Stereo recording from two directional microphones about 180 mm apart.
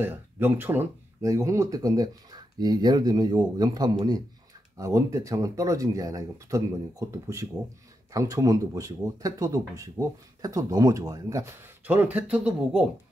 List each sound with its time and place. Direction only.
0.0 s speech: 10° right (ahead or behind)